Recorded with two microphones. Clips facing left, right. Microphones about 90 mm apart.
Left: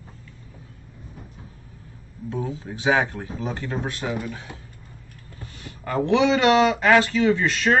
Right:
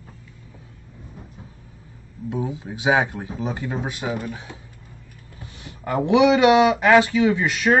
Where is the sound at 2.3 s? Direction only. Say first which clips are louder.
Right 2 dB; 15° right (ahead or behind).